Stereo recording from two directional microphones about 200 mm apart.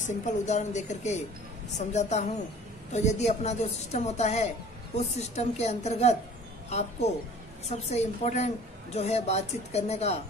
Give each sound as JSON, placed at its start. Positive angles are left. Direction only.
{"t": 0.0, "sound": "a woman's voice", "side_deg": 35}